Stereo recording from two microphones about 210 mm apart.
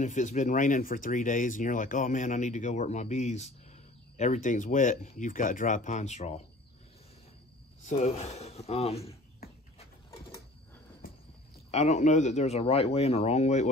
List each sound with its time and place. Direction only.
0.0 s speech: 35° left (ahead or behind)
7.8 s speech: 35° left (ahead or behind)
11.7 s speech: 30° left (ahead or behind)